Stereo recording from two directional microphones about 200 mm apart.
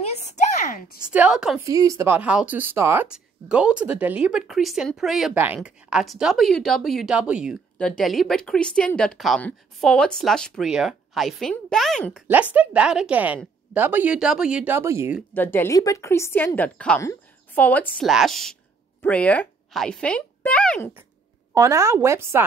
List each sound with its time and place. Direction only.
0.0 s a sound: 35° left (ahead or behind)
1.1 s speech: 5° right (ahead or behind)
1.6 s speech: 15° right (ahead or behind)
15.3 s speech: 10° left (ahead or behind)
21.5 s speech: 15° right (ahead or behind)